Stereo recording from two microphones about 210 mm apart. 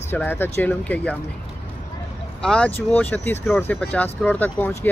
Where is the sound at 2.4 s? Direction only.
5° left (ahead or behind).